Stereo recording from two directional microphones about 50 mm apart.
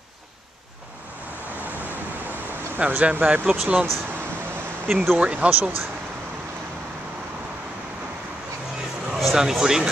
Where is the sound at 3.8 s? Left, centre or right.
Centre.